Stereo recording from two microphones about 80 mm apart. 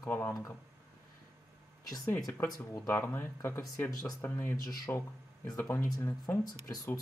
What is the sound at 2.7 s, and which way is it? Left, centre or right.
Speech, left.